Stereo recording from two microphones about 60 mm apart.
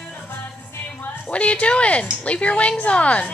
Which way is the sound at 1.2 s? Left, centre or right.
Left.